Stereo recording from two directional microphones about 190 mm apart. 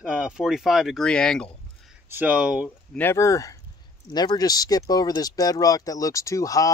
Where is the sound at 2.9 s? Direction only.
15° left (ahead or behind).